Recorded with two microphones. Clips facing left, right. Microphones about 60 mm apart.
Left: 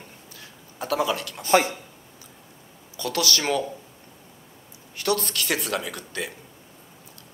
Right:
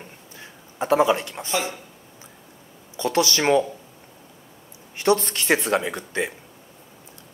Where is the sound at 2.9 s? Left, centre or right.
Right.